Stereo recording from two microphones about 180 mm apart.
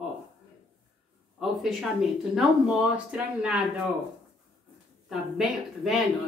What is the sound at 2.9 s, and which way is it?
Speech, 5° right (ahead or behind).